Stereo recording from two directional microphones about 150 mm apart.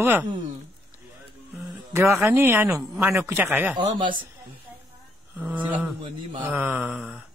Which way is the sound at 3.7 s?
30° right (ahead or behind).